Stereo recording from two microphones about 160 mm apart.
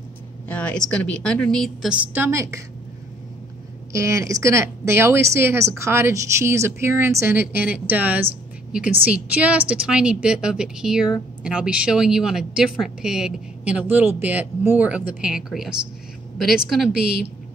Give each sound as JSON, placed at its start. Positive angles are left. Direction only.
{"t": 0.5, "sound": "a woman's voice", "side_deg": 10}
{"t": 2.1, "sound": "a woman's voice", "side_deg": -15}
{"t": 3.9, "sound": "a woman's voice", "side_deg": -20}